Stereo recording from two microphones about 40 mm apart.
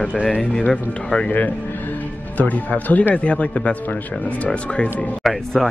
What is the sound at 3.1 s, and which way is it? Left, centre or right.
A man's voice, left.